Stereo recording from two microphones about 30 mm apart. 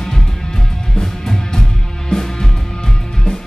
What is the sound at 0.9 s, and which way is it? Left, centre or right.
Music, centre.